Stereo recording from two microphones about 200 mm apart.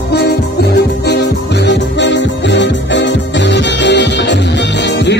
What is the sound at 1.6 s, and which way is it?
Music, 60° left (ahead or behind).